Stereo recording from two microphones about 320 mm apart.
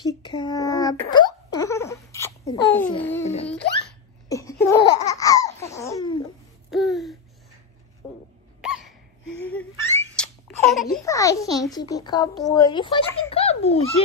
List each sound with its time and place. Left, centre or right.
0.0 s a sound: centre
4.3 s laughter: centre
6.7 s a sound: centre
8.5 s hiccup: centre
9.5 s laughter: centre
11.1 s a child's voice: centre